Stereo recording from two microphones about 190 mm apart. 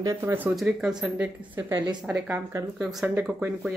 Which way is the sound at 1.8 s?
25° right (ahead or behind).